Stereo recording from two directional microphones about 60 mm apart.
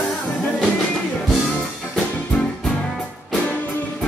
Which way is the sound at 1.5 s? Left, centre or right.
Centre.